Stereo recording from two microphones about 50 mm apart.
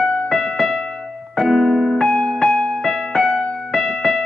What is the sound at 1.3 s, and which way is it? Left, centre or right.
Electric piano, centre.